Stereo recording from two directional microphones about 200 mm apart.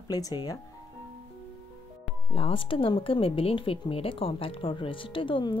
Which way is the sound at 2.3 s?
25° left (ahead or behind).